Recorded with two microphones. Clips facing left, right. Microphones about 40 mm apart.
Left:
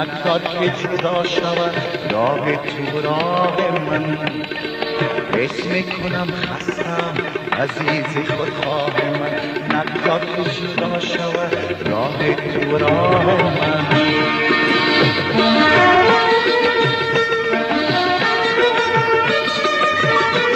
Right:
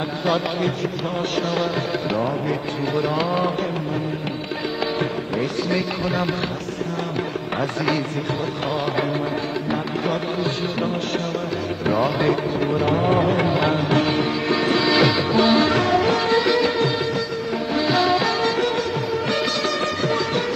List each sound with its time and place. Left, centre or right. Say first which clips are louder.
0.3 s music: left 3 dB; left
3.1 s music: left 4 dB; left
5.3 s music: left 3 dB; left
12.2 s music: left 2 dB; left
17.8 s music: left 2 dB; left